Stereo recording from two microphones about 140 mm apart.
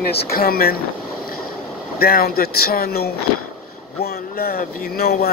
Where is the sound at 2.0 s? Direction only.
90° left.